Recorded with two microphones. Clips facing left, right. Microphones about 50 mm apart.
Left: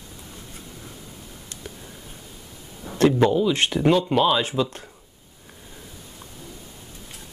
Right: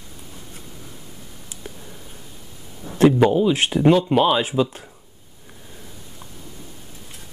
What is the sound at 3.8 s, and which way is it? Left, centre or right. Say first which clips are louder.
Speech: right 4 dB; centre.